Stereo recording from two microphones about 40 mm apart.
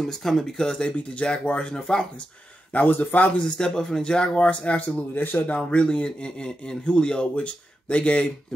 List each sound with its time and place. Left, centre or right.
0.1 s speech: centre; by 1.8 s left
1.8 s speech: centre
3.0 s speech: left
3.3 s speech: left
4.5 s speech: left
5.6 s speech: left
6.2 s speech: left